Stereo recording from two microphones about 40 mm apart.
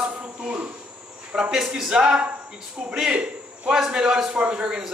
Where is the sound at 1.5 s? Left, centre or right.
Centre.